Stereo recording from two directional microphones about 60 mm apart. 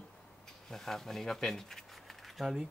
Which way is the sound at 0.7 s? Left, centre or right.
Centre.